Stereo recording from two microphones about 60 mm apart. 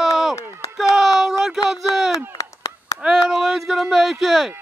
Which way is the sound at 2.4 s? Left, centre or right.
Left.